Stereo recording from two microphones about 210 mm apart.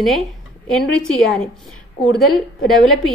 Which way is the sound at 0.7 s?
5° left (ahead or behind).